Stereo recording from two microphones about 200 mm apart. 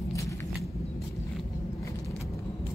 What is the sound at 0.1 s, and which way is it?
Vehicle, 15° left (ahead or behind).